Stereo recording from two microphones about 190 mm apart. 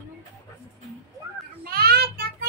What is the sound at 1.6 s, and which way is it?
Child singing, 55° right (ahead or behind).